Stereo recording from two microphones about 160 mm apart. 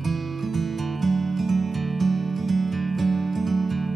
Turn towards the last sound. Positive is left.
turn(degrees=0)  # may be behind; listen again after turning